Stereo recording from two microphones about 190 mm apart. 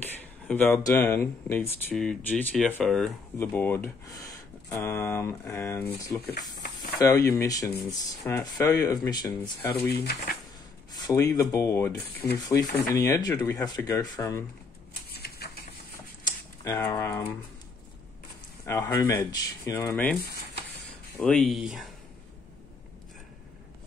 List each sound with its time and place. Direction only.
0.0 s speech: 10° left (ahead or behind)
9.8 s speech: 55° left (ahead or behind)
10.9 s speech: 20° left (ahead or behind)
15.0 s typewriter: 55° left (ahead or behind)
16.3 s a sound: 15° left (ahead or behind)
18.7 s speech: 20° left (ahead or behind)
21.2 s speech: 5° left (ahead or behind)